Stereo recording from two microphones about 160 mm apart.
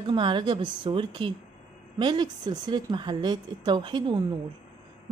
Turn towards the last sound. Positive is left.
turn(degrees=-30)  # may be behind; listen again after turning